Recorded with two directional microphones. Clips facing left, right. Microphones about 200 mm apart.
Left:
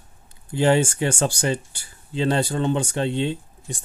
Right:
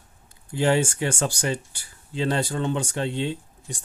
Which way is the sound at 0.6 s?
25° left (ahead or behind).